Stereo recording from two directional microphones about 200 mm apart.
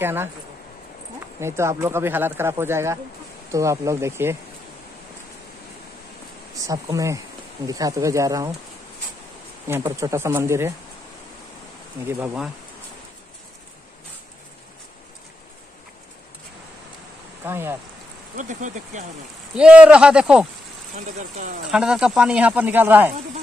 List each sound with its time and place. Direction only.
0.0 s speech: 10° right (ahead or behind)
1.4 s speech: 15° right (ahead or behind)
6.6 s speech: 15° right (ahead or behind)
9.8 s speech: 15° right (ahead or behind)
12.1 s speech: 10° right (ahead or behind)
17.5 s speech: 10° right (ahead or behind)
18.3 s speech: 40° right (ahead or behind)
19.5 s speech: 5° right (ahead or behind)
21.2 s speech: 40° right (ahead or behind)
21.6 s speech: centre (ahead or behind)